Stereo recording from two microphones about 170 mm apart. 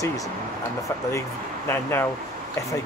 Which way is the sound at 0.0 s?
20° left (ahead or behind).